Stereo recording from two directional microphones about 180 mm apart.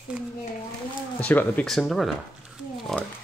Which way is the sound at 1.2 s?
10° left (ahead or behind).